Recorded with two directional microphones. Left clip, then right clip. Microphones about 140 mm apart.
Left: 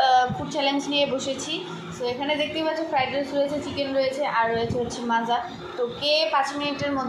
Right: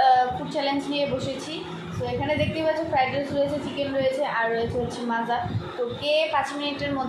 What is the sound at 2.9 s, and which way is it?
A woman's voice, 35° left (ahead or behind).